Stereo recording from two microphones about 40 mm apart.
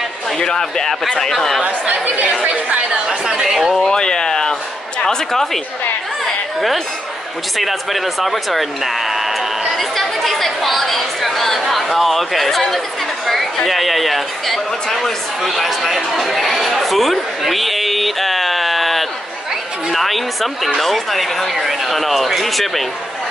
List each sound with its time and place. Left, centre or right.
0.4 s speech: centre
1.6 s speech: right
2.4 s chatter: right
2.9 s chatter: centre
3.9 s a sound: centre
5.0 s speech: centre
6.2 s chatter: centre
7.5 s a sound: centre
13.7 s speech: centre